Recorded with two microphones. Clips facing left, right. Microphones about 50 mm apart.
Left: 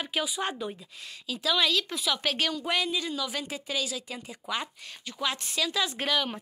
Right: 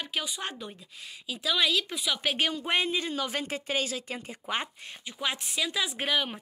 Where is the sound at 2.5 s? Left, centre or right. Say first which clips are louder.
Right 1 dB; right.